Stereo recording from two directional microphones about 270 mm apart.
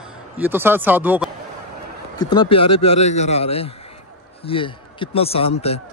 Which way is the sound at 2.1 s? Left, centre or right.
Centre.